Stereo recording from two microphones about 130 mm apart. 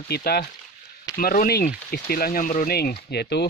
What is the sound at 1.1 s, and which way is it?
Speech, 90° left.